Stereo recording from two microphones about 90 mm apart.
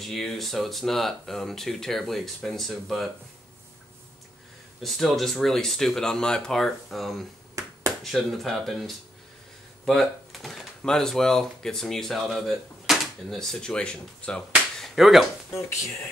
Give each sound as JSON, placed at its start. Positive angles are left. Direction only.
{"t": 0.0, "sound": "speech", "side_deg": 0}
{"t": 4.8, "sound": "speech", "side_deg": 0}
{"t": 7.6, "sound": "a sound", "side_deg": -35}
{"t": 8.0, "sound": "speech", "side_deg": 0}
{"t": 14.8, "sound": "finger snapping", "side_deg": -5}